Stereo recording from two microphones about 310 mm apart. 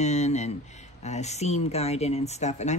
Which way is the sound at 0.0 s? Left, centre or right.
Left.